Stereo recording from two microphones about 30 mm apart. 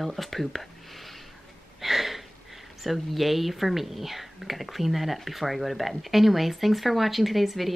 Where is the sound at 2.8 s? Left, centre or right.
Centre.